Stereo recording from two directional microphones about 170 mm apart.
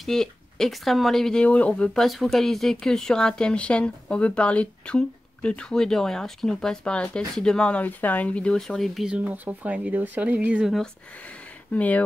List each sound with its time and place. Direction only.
0.0 s speech: centre (ahead or behind)